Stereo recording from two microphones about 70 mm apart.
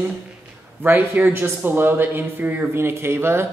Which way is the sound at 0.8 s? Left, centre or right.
Right.